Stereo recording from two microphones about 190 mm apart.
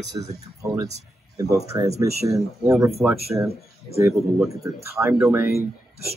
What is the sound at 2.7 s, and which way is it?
Speech, centre (ahead or behind).